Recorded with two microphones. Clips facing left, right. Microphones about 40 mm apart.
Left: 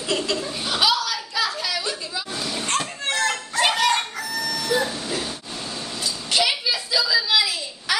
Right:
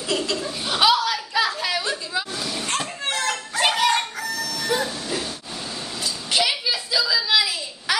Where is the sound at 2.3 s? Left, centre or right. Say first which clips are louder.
Left 1 dB; centre.